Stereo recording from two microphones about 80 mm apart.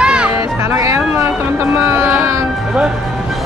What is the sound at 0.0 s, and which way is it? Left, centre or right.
Music, centre.